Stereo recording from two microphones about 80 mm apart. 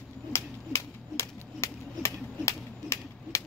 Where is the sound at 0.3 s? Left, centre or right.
Left.